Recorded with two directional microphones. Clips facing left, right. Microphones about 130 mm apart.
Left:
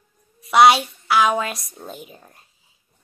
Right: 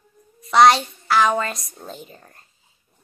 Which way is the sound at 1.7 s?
5° left (ahead or behind).